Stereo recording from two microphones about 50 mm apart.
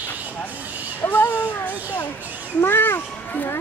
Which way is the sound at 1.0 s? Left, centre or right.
Left.